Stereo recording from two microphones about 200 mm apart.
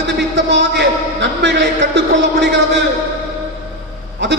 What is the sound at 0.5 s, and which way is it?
A man's voice, 60° right (ahead or behind).